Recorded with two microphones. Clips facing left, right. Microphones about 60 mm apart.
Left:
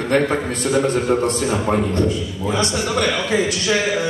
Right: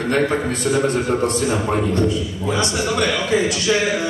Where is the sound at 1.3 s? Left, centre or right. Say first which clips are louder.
Even; left.